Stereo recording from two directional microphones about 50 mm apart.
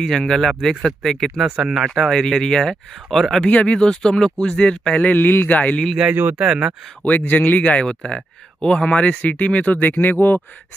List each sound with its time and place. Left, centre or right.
0.0 s speech: centre
1.4 s speech: centre
2.0 s speech: centre
3.3 s speech: left
5.5 s speech: left
6.1 s speech: right
6.4 s speech: centre
7.1 s speech: left